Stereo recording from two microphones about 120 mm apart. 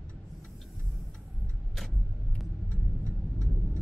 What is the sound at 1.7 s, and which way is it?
Vehicle, centre (ahead or behind).